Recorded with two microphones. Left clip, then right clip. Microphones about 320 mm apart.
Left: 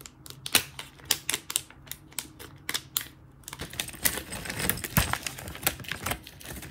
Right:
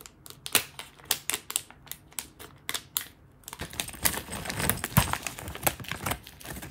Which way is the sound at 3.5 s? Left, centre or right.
Centre.